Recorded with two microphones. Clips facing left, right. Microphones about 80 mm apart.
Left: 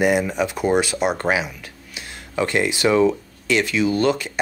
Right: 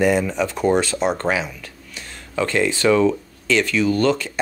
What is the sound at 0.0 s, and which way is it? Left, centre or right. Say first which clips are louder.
Speech: right 1 dB; centre.